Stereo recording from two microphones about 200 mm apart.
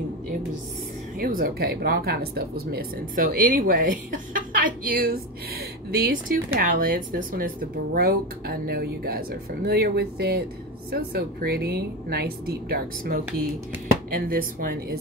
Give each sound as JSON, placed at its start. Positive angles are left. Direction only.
{"t": 1.2, "sound": "speech", "side_deg": -45}